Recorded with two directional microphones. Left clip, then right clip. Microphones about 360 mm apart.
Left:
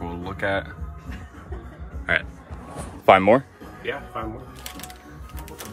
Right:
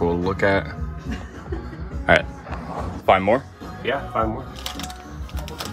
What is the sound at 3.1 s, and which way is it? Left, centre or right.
Speech, left.